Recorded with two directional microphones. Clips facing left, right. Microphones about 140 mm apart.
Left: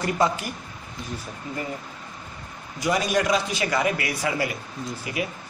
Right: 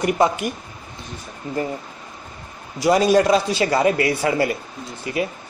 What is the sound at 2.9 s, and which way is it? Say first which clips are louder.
A man's voice: right 7 dB; 30° right (ahead or behind).